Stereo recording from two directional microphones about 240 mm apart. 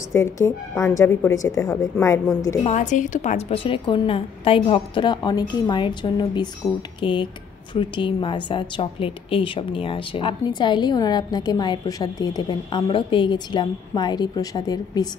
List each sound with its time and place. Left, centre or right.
0.1 s a woman's voice: centre
2.7 s a woman's voice: left